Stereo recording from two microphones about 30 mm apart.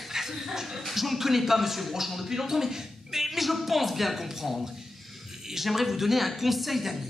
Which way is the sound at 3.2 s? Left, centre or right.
Centre.